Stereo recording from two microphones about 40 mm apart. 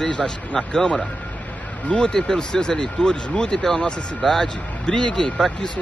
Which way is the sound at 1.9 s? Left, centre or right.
Left.